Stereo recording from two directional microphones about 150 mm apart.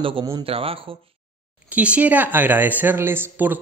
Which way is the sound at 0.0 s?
35° right (ahead or behind).